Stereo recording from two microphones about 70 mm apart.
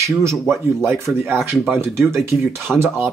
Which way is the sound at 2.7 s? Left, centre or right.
Centre.